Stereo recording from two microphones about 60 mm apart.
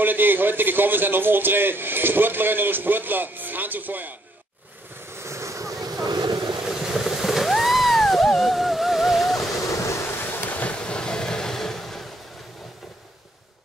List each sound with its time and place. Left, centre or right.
0.0 s a man's voice: right
5.1 s vehicle: right
6.6 s a sound: centre
9.6 s waves: left; by 12.1 s centre